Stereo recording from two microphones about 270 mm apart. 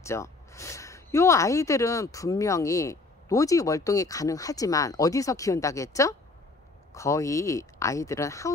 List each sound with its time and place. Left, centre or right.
0.0 s speech: centre